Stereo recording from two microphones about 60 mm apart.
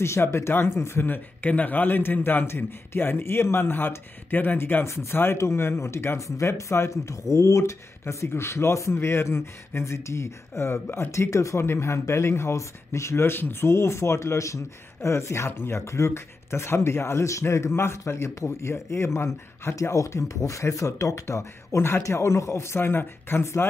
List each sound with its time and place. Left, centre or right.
0.0 s speech: left
2.4 s speech: left
4.8 s speech: left
8.1 s speech: left
11.1 s speech: left
11.6 s speech: left
19.7 s speech: left